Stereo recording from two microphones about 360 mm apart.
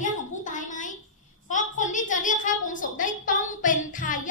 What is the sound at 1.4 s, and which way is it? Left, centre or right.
A child's voice, left.